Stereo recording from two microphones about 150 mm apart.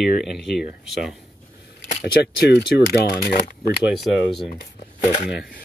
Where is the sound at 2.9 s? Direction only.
85° left.